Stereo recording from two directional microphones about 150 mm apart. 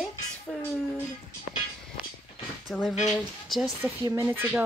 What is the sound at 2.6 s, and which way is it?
Speech, centre (ahead or behind).